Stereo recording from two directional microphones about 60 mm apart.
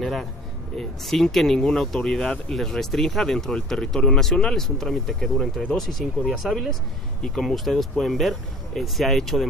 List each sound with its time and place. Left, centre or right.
0.0 s speech: centre